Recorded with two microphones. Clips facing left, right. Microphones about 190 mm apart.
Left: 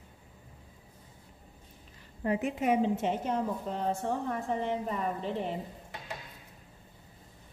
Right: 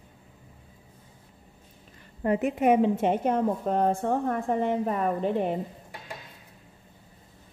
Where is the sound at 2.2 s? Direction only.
55° right (ahead or behind).